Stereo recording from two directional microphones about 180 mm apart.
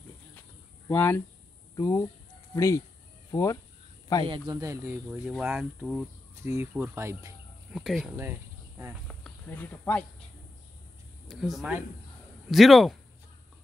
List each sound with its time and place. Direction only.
0.8 s speech: 10° left (ahead or behind)
4.3 s speech: 20° right (ahead or behind)
7.7 s speech: centre (ahead or behind)
8.2 s cricket: 15° right (ahead or behind)
9.0 s speech: 5° left (ahead or behind)
11.2 s speech: centre (ahead or behind)